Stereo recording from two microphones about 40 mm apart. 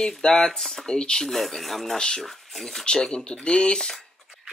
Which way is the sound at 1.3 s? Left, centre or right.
Centre.